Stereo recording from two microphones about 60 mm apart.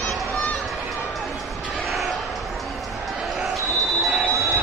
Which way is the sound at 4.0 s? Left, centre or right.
Centre.